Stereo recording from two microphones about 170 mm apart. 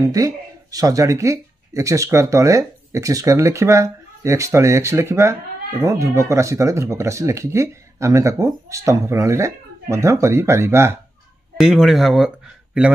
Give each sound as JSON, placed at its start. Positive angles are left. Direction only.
{"t": 0.0, "sound": "speech", "side_deg": -20}
{"t": 11.5, "sound": "speech", "side_deg": 0}